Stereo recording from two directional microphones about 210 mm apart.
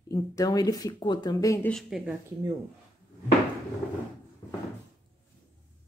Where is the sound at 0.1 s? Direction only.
15° left (ahead or behind).